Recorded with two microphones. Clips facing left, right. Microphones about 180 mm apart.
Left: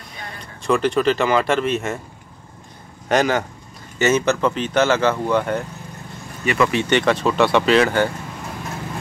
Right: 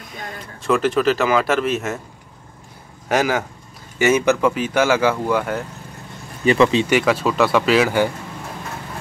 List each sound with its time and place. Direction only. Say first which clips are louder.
0.6 s speech: even; centre (ahead or behind)
3.1 s speech: left 1 dB; 5° right (ahead or behind)
6.4 s speech: right 4 dB; 30° right (ahead or behind)
6.7 s speech: right 2 dB; 15° right (ahead or behind)
7.0 s speech: even; 5° right (ahead or behind)